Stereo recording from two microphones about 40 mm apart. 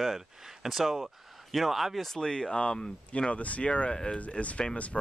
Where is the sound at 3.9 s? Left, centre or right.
Centre.